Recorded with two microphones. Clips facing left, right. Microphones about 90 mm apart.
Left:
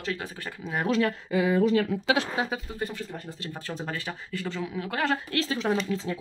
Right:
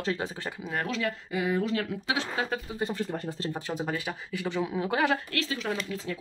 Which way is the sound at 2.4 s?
20° left (ahead or behind).